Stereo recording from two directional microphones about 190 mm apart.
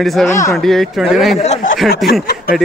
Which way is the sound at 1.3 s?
35° left (ahead or behind).